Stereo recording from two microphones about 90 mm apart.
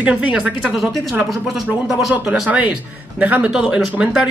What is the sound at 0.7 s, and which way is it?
Speech, 5° right (ahead or behind).